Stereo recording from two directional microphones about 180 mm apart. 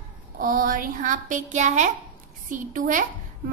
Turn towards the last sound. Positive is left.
turn(degrees=-45)  # may be behind; listen again after turning